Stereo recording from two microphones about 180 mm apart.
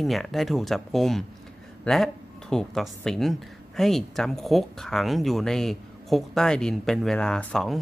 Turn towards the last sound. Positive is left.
turn(degrees=5)  # may be behind; listen again after turning